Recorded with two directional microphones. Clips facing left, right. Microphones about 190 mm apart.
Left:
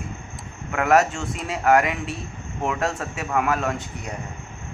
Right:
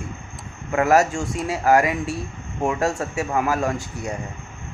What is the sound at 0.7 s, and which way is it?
Speech, 30° right (ahead or behind).